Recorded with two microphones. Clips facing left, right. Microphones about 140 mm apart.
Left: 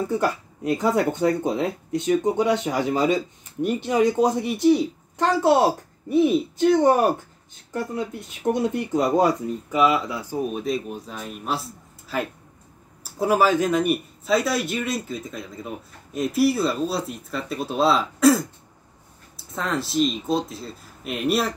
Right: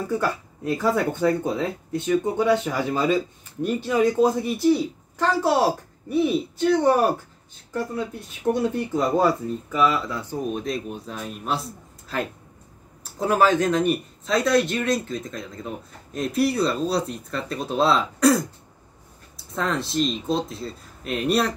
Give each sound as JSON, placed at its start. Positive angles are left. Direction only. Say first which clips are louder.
{"t": 0.1, "sound": "speech", "louder": "left 1 dB", "side_deg": 20}
{"t": 8.5, "sound": "speech", "louder": "even", "side_deg": 20}